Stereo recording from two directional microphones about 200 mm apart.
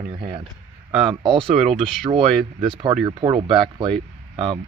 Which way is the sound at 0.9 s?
Centre (ahead or behind).